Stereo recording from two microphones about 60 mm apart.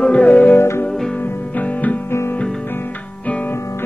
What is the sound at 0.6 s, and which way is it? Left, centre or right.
Music, left.